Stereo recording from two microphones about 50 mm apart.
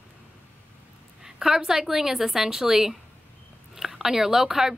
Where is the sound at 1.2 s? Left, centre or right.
Centre.